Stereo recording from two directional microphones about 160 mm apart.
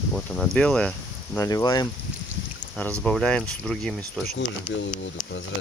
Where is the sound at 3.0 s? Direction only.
5° left (ahead or behind).